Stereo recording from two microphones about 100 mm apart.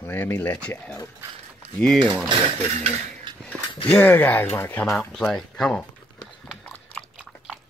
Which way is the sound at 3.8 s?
20° left (ahead or behind).